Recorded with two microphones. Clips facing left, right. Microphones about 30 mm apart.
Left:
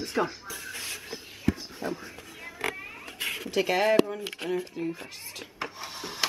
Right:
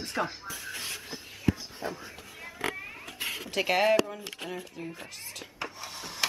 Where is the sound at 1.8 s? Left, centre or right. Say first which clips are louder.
Left 3 dB; centre.